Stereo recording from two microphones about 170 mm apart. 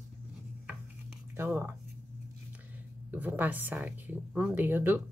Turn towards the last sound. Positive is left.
turn(degrees=-10)  # may be behind; listen again after turning